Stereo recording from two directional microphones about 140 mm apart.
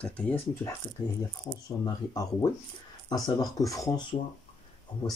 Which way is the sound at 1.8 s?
30° left (ahead or behind).